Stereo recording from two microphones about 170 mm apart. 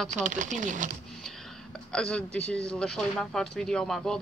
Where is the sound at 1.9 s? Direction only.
5° left (ahead or behind).